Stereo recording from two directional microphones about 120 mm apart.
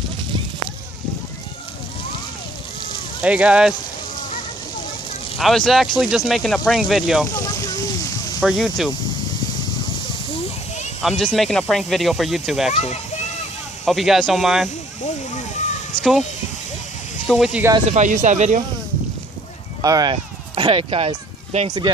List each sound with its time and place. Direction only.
3.2 s speech: 10° right (ahead or behind)
5.4 s speech: centre (ahead or behind)
7.3 s a sound: 30° left (ahead or behind)
8.4 s speech: centre (ahead or behind)
11.0 s speech: centre (ahead or behind)
12.7 s speech: 70° left (ahead or behind)
13.8 s speech: centre (ahead or behind)
15.3 s a sound: 90° left
16.0 s speech: centre (ahead or behind)
17.3 s speech: 5° right (ahead or behind)
17.8 s speech: 75° right (ahead or behind)
19.8 s speech: 30° right (ahead or behind)
20.5 s speech: 50° right (ahead or behind)
21.6 s speech: 35° right (ahead or behind)